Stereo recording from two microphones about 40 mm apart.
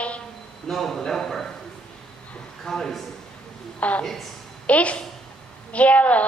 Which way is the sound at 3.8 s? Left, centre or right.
Left.